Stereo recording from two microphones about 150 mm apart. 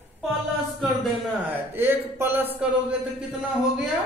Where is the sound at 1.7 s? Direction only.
15° right (ahead or behind).